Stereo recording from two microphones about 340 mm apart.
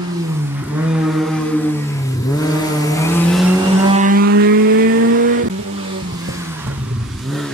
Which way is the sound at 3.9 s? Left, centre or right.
Right.